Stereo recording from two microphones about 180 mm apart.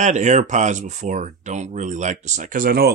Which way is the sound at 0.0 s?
40° right (ahead or behind).